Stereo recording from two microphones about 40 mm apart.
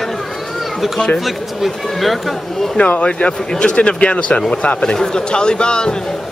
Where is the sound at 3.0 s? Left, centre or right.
Left.